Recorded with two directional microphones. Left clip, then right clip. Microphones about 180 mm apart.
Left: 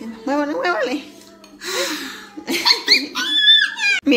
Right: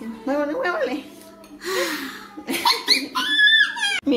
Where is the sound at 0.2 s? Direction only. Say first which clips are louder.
Left 3 dB; 45° left (ahead or behind).